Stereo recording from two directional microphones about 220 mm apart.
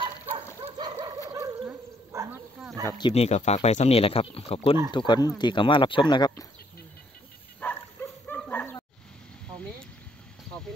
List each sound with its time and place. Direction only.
0.7 s dog: 20° right (ahead or behind)
2.9 s speech: 25° left (ahead or behind)
7.6 s bow-wow: 10° left (ahead or behind)